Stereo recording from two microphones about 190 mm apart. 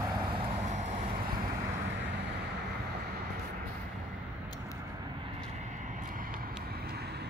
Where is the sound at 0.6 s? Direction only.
40° right (ahead or behind).